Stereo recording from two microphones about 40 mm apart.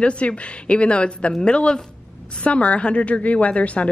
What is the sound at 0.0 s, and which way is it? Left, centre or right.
A woman's voice, left.